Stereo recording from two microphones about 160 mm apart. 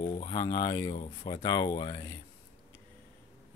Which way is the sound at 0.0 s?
35° left (ahead or behind).